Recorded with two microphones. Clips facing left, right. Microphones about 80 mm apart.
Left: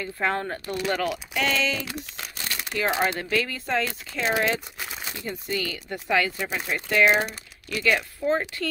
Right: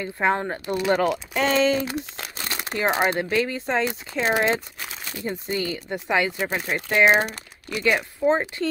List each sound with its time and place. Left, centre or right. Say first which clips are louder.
0.0 s speech: right 4 dB; right
0.9 s speech: right 5 dB; right
2.5 s crumpling: right 2 dB; right
3.2 s speech: right 4 dB; right